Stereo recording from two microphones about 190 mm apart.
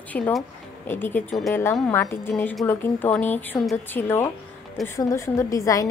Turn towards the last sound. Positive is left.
turn(degrees=15)  # may be behind; listen again after turning